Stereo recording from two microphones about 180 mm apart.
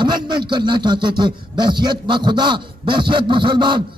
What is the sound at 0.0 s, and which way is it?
Speech, 25° right (ahead or behind).